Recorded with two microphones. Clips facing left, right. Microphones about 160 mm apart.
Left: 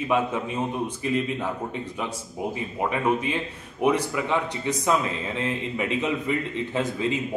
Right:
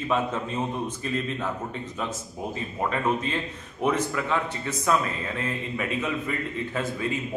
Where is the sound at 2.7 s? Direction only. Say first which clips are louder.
Left 2 dB; 15° left (ahead or behind).